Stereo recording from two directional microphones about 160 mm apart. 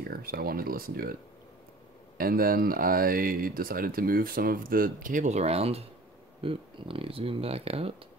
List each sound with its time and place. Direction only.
0.0 s speech: 70° right (ahead or behind)
2.1 s speech: 65° right (ahead or behind); by 7.9 s 40° right (ahead or behind)